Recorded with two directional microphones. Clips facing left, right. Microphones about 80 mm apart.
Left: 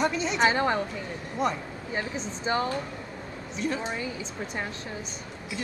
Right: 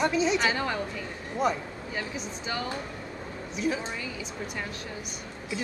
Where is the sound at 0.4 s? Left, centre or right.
Left.